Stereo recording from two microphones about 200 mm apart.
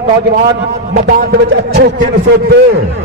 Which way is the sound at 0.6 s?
55° right (ahead or behind).